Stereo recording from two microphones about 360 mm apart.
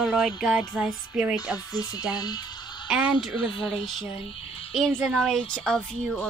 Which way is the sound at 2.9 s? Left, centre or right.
Centre.